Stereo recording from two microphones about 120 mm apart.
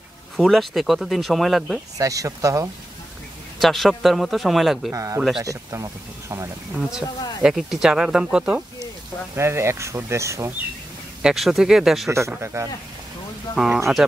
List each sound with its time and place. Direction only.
0.4 s speech: centre (ahead or behind)
2.0 s speech: 30° right (ahead or behind)
3.5 s speech: centre (ahead or behind)
4.9 s speech: 25° right (ahead or behind)
6.9 s speech: 5° right (ahead or behind)
9.3 s speech: 20° right (ahead or behind)
11.2 s speech: centre (ahead or behind)
12.1 s speech: 20° right (ahead or behind)
13.6 s speech: 5° right (ahead or behind)